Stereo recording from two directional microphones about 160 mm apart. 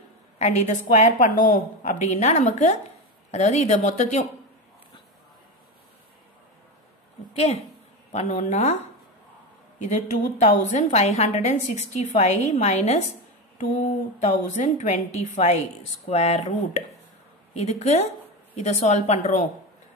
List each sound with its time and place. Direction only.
0.4 s a woman's voice: 45° left (ahead or behind)
7.3 s a woman's voice: 40° left (ahead or behind)
9.8 s a woman's voice: 50° left (ahead or behind)